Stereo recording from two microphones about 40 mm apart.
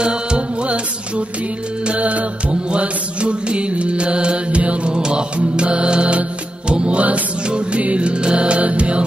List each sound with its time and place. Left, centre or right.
0.0 s music: right
1.9 s music: right